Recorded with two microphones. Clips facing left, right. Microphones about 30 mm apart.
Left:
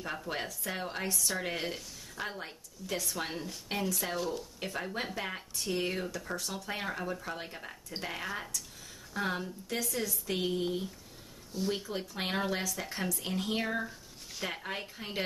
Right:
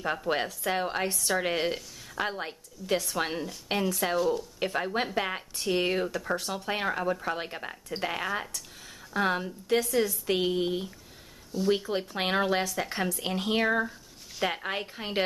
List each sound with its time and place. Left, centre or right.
0.0 s a woman's voice: right
3.2 s speech: right
3.7 s a woman's voice: right
4.2 s speech: centre
4.6 s a woman's voice: right
8.0 s speech: centre
11.5 s speech: centre
12.1 s speech: right